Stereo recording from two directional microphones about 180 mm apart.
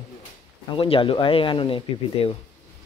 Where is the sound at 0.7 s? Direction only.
30° left (ahead or behind).